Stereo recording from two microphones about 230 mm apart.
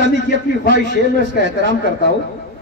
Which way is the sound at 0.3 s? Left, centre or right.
Left.